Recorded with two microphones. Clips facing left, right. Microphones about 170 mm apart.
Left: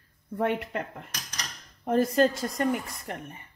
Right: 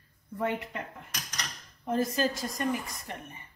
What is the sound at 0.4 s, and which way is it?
A woman's voice, 65° left (ahead or behind).